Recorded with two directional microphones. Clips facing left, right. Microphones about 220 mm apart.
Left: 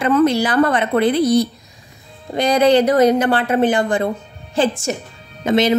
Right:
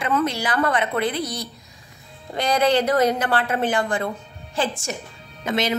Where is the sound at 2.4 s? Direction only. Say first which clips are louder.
Left 6 dB; 15° left (ahead or behind).